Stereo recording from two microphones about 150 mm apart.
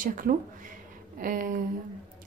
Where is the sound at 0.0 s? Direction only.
65° right (ahead or behind).